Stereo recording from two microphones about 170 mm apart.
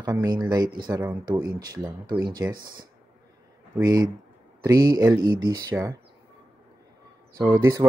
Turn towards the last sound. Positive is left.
turn(degrees=-20)  # may be behind; listen again after turning